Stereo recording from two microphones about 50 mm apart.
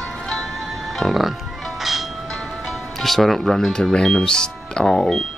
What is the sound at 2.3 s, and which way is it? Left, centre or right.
Music, centre.